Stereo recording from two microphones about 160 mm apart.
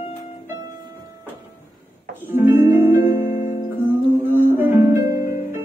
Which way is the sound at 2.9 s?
65° left (ahead or behind).